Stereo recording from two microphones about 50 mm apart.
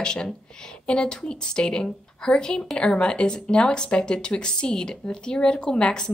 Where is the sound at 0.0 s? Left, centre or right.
Centre.